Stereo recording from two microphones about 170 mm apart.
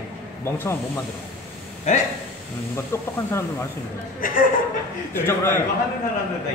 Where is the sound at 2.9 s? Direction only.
15° left (ahead or behind).